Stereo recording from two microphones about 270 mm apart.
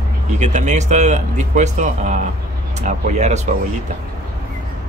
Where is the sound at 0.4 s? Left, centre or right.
Right.